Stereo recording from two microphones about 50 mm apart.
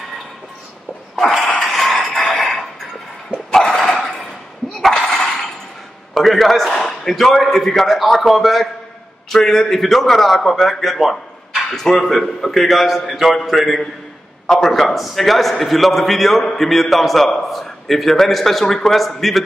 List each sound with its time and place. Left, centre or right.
1.1 s dog: centre
1.6 s music: centre
2.1 s a sound: centre
3.5 s dog: centre
6.1 s a sound: centre
7.4 s a man's voice: centre